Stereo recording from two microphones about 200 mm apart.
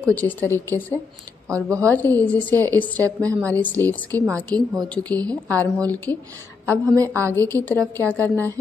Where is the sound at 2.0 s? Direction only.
10° left (ahead or behind).